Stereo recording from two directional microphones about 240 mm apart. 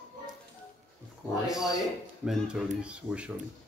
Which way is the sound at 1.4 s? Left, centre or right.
Centre.